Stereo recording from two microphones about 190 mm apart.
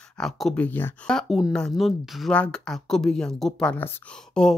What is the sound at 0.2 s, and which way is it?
Speech, centre (ahead or behind).